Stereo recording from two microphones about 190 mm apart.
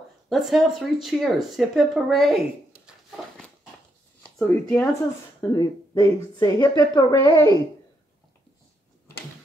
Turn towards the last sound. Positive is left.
turn(degrees=20)  # may be behind; listen again after turning